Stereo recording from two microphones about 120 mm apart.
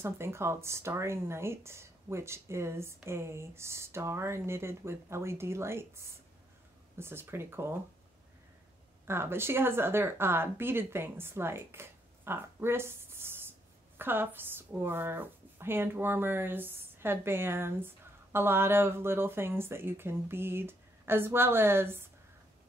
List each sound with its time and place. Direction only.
0.0 s speech: 20° right (ahead or behind)
9.0 s speech: 20° right (ahead or behind)